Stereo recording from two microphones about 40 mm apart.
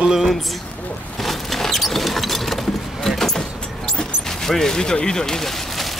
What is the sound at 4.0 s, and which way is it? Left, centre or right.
Speech, centre.